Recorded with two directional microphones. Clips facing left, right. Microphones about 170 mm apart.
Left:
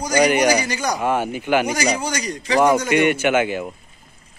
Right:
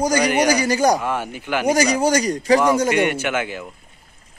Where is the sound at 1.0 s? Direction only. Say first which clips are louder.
Left 4 dB; 15° left (ahead or behind).